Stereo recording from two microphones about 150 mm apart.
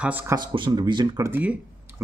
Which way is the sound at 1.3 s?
10° right (ahead or behind).